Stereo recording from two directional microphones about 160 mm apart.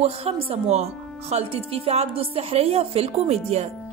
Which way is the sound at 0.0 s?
40° right (ahead or behind).